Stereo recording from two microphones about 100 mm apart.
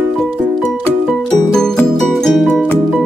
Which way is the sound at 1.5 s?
5° left (ahead or behind).